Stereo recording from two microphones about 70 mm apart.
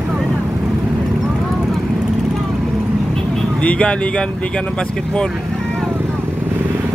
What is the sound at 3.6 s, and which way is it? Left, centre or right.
Speech, centre.